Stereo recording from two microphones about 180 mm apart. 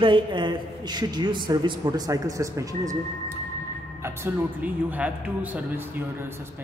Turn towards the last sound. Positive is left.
turn(degrees=-10)  # may be behind; listen again after turning